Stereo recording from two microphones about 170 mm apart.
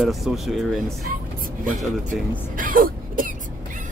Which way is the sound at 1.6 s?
50° right (ahead or behind).